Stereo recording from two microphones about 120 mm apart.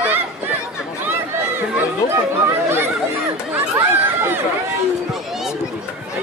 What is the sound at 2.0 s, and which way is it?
Speech, 20° right (ahead or behind).